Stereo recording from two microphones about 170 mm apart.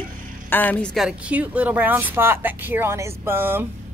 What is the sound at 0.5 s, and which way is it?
A woman's voice, 10° left (ahead or behind).